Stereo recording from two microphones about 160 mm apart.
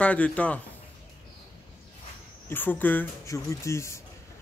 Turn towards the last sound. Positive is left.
turn(degrees=15)  # may be behind; listen again after turning